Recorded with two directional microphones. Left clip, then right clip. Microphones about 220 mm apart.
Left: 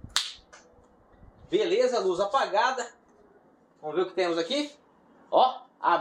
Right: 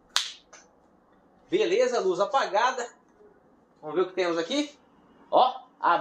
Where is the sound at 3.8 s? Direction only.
15° right (ahead or behind).